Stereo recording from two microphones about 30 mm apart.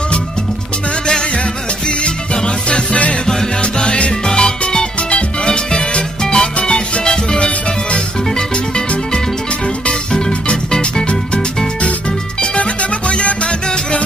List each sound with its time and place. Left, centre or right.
2.0 s music: left
4.3 s music: left
7.3 s music: left
13.1 s music: left